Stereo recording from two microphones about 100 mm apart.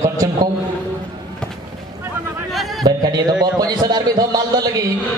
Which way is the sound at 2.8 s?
40° right (ahead or behind).